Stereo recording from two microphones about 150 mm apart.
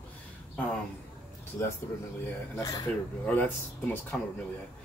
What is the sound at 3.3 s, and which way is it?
Speech, 10° left (ahead or behind).